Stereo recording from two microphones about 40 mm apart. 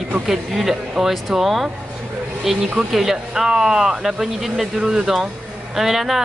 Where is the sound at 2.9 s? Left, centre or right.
Centre.